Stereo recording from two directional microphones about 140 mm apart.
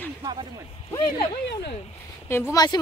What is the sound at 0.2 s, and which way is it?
Speech, 30° right (ahead or behind).